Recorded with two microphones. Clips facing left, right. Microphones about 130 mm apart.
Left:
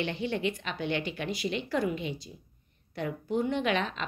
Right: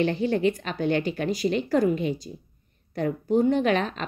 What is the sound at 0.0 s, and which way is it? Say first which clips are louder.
Speech: right 8 dB; 40° right (ahead or behind).